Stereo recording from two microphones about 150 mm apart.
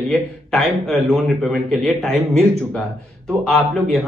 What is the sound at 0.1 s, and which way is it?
A man's voice, 5° left (ahead or behind).